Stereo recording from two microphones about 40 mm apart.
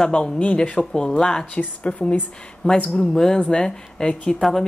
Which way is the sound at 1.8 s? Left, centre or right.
Left.